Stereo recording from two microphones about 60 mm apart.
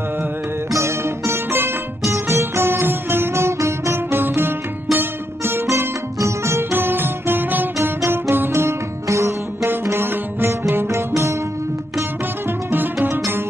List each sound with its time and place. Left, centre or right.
0.7 s music: right
6.7 s music: right
9.0 s music: right
9.7 s music: right
12.7 s music: right